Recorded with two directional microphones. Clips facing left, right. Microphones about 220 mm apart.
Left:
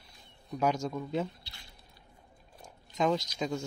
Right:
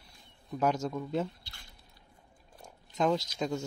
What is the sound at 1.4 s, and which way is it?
Speech, 50° right (ahead or behind).